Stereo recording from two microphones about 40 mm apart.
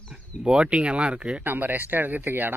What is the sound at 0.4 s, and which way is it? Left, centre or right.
Speech, right.